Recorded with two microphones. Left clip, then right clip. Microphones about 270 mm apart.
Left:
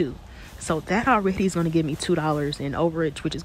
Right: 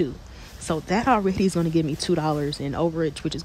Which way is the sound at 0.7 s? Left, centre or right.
Centre.